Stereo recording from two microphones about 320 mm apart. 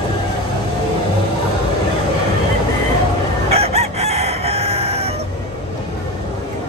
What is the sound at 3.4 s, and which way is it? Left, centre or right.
Chicken, centre.